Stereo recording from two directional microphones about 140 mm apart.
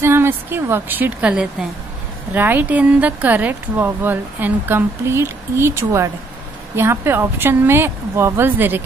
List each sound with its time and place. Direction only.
0.0 s speech: 15° right (ahead or behind)